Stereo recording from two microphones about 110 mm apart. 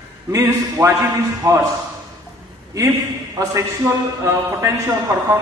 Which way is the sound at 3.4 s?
30° right (ahead or behind).